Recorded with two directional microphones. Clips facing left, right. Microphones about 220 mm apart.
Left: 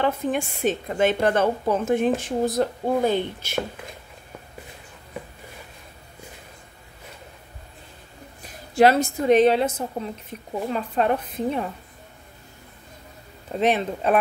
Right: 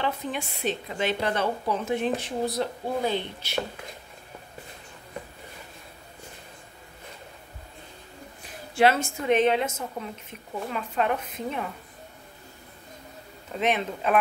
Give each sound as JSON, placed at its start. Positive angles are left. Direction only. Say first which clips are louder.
{"t": 0.0, "sound": "speech", "louder": "left 6 dB", "side_deg": 50}
{"t": 8.7, "sound": "a woman's voice", "louder": "left 5 dB", "side_deg": 40}
{"t": 13.5, "sound": "a woman's voice", "louder": "left 5 dB", "side_deg": 35}